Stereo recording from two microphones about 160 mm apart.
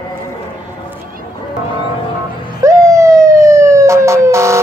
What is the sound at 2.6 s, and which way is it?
Emergency vehicle, 20° right (ahead or behind).